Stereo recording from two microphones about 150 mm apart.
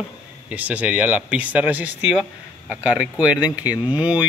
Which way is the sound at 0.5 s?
10° right (ahead or behind).